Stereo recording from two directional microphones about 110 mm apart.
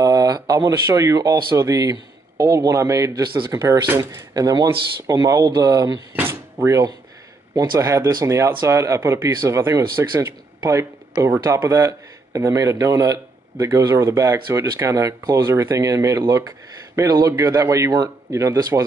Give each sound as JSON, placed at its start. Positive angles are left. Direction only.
{"t": 0.0, "sound": "speech", "side_deg": -35}
{"t": 6.1, "sound": "speech", "side_deg": -20}
{"t": 7.5, "sound": "speech", "side_deg": -40}
{"t": 7.8, "sound": "speech", "side_deg": -25}